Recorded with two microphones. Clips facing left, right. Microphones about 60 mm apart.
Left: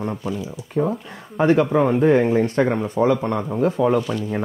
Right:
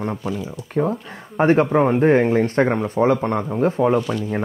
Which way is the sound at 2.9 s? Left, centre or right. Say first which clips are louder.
Right 1 dB; right.